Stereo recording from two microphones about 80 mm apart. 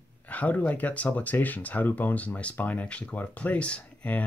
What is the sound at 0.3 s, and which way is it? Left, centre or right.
Speech, centre.